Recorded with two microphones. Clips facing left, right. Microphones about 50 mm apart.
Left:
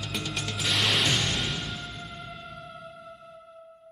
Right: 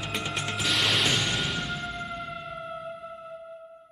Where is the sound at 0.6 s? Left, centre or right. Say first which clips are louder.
Even; centre.